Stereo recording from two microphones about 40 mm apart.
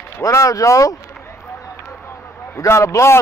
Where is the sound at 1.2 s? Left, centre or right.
Left.